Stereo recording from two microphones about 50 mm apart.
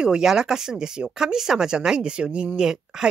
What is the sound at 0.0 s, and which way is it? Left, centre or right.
Speech, centre.